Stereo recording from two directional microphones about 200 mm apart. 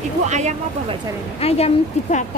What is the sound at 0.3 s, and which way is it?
Speech, 35° right (ahead or behind).